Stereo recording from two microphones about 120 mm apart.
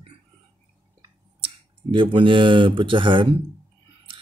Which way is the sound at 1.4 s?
45° right (ahead or behind).